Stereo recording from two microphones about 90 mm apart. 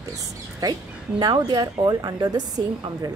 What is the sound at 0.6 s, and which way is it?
Speech, 45° right (ahead or behind).